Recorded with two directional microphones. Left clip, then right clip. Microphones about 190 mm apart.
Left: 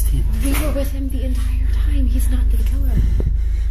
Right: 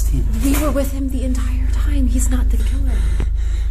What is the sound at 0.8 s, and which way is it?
Speech, 20° right (ahead or behind).